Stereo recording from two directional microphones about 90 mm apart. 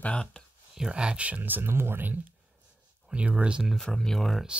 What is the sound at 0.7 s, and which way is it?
Speech, 10° right (ahead or behind).